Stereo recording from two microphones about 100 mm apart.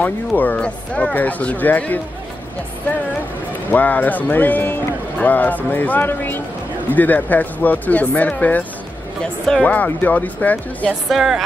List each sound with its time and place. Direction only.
0.4 s speech: 15° left (ahead or behind)
3.7 s speech: 15° left (ahead or behind)
11.1 s speech: centre (ahead or behind)